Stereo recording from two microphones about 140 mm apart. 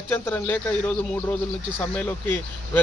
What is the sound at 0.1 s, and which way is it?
A man's voice, 15° left (ahead or behind).